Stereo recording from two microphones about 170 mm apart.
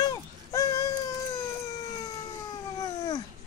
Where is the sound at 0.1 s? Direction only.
20° left (ahead or behind).